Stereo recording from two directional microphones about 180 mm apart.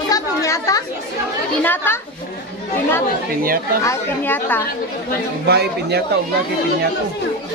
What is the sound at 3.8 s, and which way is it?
Speech, 15° left (ahead or behind).